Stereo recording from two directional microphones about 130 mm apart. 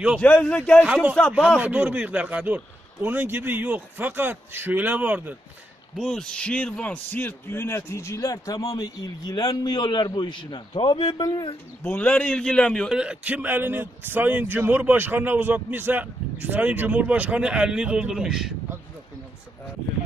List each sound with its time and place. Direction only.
0.2 s a man's voice: 10° left (ahead or behind)
0.8 s a man's voice: 10° right (ahead or behind)
5.9 s a man's voice: 5° left (ahead or behind); by 11.2 s 40° left (ahead or behind)
11.8 s a man's voice: 10° left (ahead or behind)
13.0 s a man's voice: 10° right (ahead or behind)